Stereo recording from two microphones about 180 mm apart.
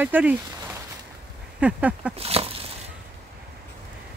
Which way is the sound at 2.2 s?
35° right (ahead or behind).